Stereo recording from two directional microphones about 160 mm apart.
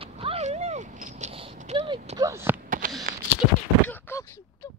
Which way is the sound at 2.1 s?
20° right (ahead or behind).